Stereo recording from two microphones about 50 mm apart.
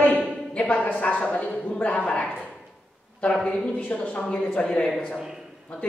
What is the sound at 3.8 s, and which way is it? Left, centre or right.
A woman's voice, left.